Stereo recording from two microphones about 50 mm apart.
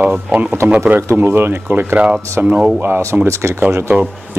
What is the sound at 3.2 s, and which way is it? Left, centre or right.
Speech, right.